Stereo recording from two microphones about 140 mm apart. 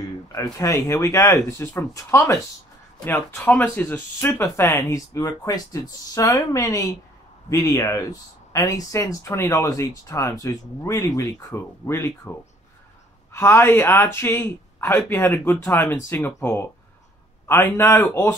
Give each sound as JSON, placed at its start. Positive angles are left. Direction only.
{"t": 0.3, "sound": "speech", "side_deg": 25}